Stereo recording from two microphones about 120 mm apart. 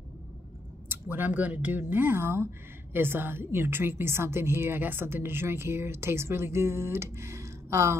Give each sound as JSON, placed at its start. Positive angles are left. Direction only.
{"t": 0.8, "sound": "speech", "side_deg": -15}